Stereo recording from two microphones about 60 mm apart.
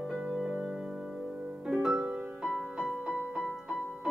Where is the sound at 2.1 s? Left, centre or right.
Centre.